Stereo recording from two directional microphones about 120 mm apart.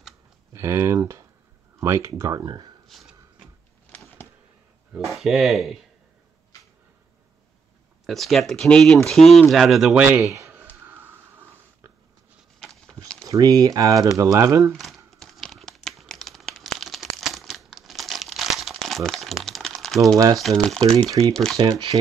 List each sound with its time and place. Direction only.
0.5 s speech: 25° right (ahead or behind)
2.9 s snort: 5° right (ahead or behind)
5.1 s speech: centre (ahead or behind)
8.1 s speech: centre (ahead or behind)
10.2 s a sound: 25° right (ahead or behind)
12.5 s a sound: centre (ahead or behind)
13.2 s speech: 30° right (ahead or behind)
15.0 s crumpling: centre (ahead or behind)
20.3 s speech: centre (ahead or behind)
21.5 s speech: 35° right (ahead or behind)